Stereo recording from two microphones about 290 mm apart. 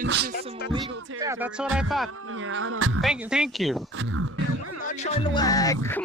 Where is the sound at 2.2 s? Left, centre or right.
Right.